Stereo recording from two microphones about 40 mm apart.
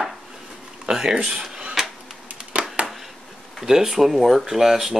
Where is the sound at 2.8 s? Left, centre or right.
Right.